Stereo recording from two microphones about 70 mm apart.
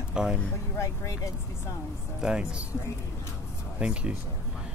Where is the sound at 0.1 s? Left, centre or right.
Centre.